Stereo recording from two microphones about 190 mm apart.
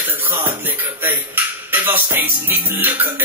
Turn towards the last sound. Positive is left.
turn(degrees=-10)  # may be behind; listen again after turning